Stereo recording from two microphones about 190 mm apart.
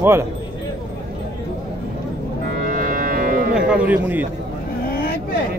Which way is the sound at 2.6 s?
45° right (ahead or behind).